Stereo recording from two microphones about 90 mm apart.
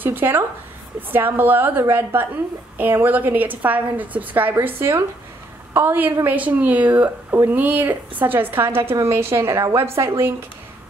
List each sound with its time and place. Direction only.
0.0 s a woman's voice: 20° right (ahead or behind)